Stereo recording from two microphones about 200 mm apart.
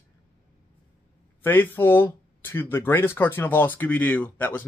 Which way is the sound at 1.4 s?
10° left (ahead or behind).